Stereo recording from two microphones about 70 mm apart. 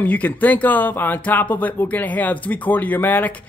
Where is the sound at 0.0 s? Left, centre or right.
Left.